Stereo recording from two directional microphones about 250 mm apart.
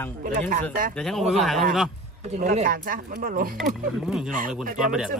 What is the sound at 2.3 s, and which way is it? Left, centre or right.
Speech, right.